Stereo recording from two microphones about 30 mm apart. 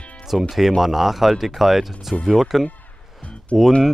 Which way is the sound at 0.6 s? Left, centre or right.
Centre.